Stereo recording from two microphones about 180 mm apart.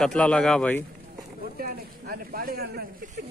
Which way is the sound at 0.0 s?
5° left (ahead or behind).